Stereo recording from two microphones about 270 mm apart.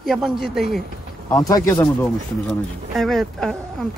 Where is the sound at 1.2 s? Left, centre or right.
Centre.